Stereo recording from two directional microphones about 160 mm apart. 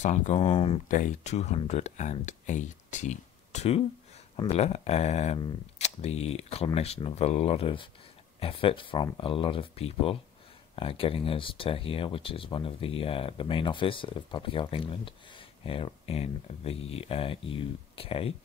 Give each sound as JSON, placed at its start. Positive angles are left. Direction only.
{"t": 0.0, "sound": "speech", "side_deg": 45}
{"t": 0.5, "sound": "speech", "side_deg": 30}
{"t": 0.8, "sound": "speech", "side_deg": 55}